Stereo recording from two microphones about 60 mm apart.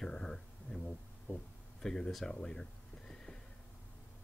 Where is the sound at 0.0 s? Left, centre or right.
Centre.